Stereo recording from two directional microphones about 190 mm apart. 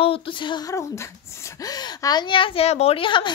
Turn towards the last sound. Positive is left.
turn(degrees=25)  # may be behind; listen again after turning